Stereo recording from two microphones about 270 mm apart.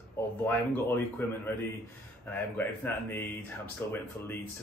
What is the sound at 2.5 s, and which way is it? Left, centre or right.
Speech, centre.